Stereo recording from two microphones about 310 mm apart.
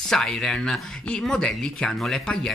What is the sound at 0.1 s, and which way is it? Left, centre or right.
Speech, centre.